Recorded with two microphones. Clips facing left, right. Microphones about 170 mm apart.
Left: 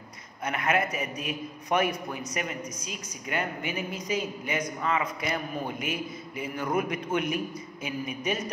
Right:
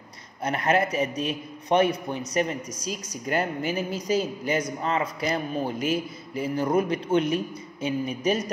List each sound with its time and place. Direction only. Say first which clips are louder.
0.4 s speech: right 4 dB; 30° right (ahead or behind)